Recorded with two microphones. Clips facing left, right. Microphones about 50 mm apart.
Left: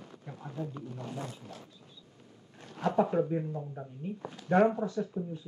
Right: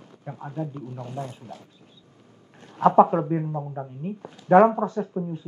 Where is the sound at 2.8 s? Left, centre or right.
Right.